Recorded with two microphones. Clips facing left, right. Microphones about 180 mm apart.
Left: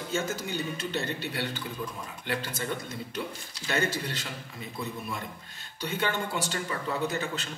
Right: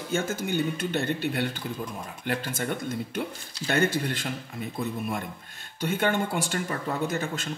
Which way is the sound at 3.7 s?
55° right (ahead or behind).